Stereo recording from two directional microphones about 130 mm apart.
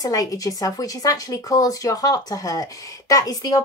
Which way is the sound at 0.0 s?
30° left (ahead or behind).